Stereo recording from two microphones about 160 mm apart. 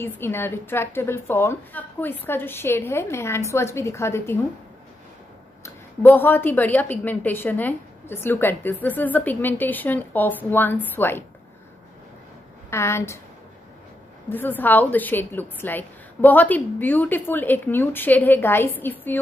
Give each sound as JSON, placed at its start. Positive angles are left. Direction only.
{"t": 0.0, "sound": "a woman's voice", "side_deg": 15}
{"t": 5.6, "sound": "a woman's voice", "side_deg": 10}
{"t": 12.6, "sound": "a woman's voice", "side_deg": 15}
{"t": 14.3, "sound": "a woman's voice", "side_deg": 10}